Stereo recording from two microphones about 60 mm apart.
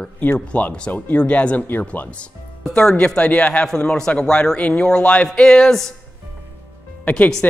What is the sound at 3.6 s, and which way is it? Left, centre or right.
A man's voice, centre.